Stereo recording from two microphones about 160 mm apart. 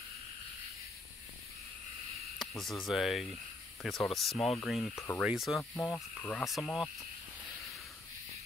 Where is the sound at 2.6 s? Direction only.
Centre (ahead or behind).